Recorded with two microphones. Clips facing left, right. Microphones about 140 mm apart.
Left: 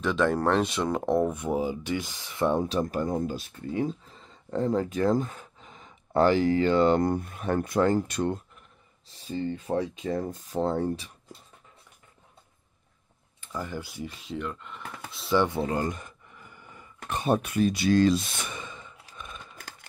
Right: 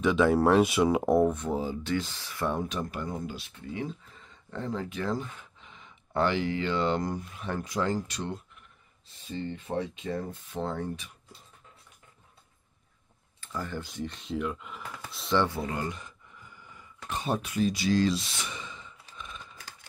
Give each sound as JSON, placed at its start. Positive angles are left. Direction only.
{"t": 0.0, "sound": "speech", "side_deg": -5}
{"t": 1.3, "sound": "speech", "side_deg": 15}
{"t": 2.6, "sound": "speech", "side_deg": 40}
{"t": 9.0, "sound": "speech", "side_deg": 35}
{"t": 13.4, "sound": "speech", "side_deg": 15}
{"t": 15.3, "sound": "speech", "side_deg": 20}
{"t": 15.7, "sound": "a sound", "side_deg": 40}